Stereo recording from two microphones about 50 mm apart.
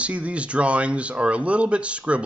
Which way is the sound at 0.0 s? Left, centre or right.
Right.